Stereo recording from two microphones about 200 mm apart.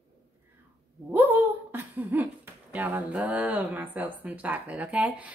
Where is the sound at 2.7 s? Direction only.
10° right (ahead or behind).